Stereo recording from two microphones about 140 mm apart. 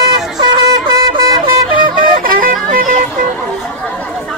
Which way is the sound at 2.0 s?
80° right.